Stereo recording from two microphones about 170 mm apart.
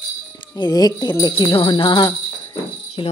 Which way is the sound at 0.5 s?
25° left (ahead or behind).